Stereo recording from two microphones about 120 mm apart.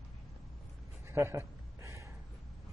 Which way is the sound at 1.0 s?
20° right (ahead or behind).